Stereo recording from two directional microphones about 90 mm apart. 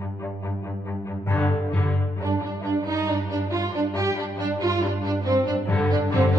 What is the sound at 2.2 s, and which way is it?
Music, 45° right (ahead or behind).